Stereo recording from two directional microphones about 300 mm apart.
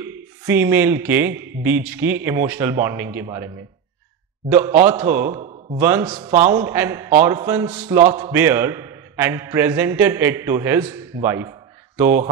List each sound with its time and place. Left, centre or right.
0.0 s a man's voice: centre